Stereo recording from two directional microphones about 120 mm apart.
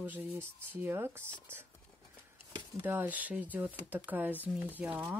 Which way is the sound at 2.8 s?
15° right (ahead or behind).